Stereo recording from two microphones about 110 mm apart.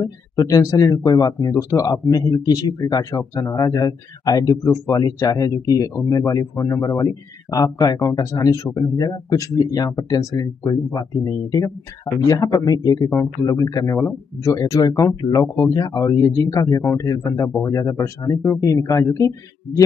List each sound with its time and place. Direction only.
0.0 s speech: 30° left (ahead or behind)